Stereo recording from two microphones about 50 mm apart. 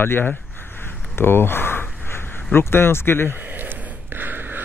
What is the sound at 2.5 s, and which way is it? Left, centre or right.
Speech, left.